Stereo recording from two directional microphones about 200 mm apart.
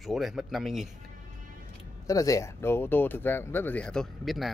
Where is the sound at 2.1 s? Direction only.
15° left (ahead or behind).